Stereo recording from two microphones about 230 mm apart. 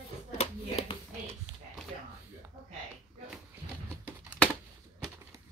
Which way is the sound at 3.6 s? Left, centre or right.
Right.